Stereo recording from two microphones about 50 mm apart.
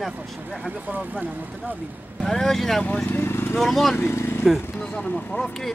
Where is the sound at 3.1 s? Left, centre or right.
Left.